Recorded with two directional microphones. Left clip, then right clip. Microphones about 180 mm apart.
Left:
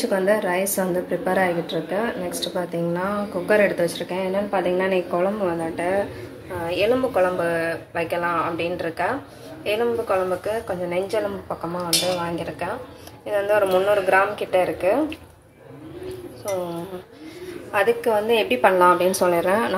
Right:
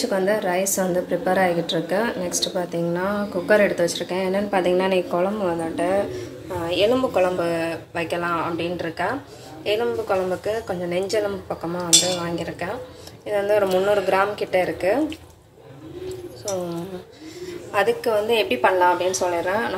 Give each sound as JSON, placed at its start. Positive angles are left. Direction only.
{"t": 0.0, "sound": "a woman's voice", "side_deg": 5}
{"t": 1.7, "sound": "a woman's voice", "side_deg": -10}
{"t": 12.3, "sound": "a woman's voice", "side_deg": 0}
{"t": 17.7, "sound": "a woman's voice", "side_deg": 0}
{"t": 18.6, "sound": "a woman's voice", "side_deg": 15}